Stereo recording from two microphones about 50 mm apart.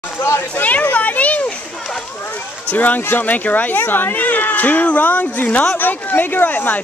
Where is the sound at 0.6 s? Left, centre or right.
Left.